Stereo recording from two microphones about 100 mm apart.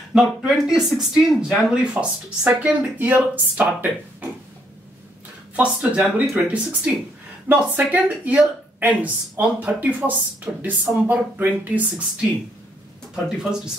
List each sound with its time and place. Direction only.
0.1 s speech: 5° right (ahead or behind)
5.6 s speech: 10° right (ahead or behind)